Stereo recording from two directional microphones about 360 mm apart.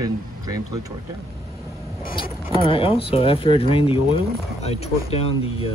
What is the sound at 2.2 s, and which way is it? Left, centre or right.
Speech, centre.